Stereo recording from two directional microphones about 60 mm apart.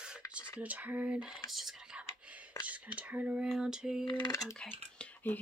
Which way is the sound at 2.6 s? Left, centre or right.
Right.